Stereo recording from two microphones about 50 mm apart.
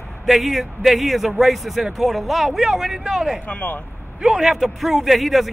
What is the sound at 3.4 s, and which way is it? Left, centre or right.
Speech, left.